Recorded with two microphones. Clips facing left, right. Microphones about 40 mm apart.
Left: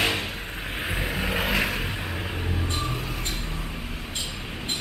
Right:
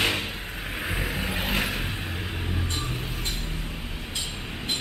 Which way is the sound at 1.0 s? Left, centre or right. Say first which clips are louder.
Left 2 dB; left.